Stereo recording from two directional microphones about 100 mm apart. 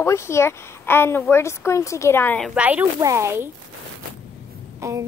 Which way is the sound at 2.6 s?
15° right (ahead or behind).